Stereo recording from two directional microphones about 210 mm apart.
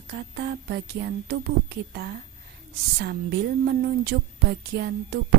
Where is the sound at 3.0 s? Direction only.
50° right (ahead or behind).